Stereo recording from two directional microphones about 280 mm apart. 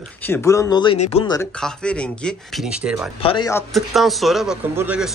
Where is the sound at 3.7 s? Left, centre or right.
Centre.